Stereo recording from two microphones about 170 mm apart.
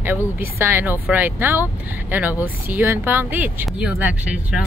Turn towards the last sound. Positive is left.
turn(degrees=-10)  # may be behind; listen again after turning